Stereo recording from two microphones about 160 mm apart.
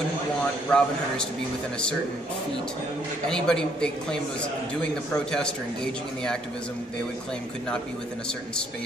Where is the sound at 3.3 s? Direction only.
5° left (ahead or behind).